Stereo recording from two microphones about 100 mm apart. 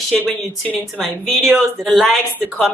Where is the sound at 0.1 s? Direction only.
5° left (ahead or behind).